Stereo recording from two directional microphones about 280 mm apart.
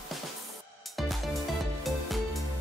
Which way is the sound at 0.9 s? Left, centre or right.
Centre.